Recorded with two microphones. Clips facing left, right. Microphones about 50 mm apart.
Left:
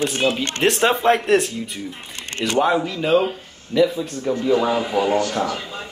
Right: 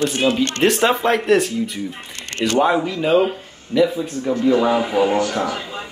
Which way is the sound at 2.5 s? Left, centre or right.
Centre.